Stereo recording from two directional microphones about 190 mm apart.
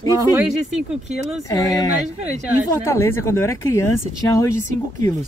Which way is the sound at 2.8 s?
15° left (ahead or behind).